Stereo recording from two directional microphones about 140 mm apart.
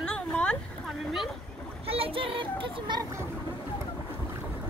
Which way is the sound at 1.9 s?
40° right (ahead or behind).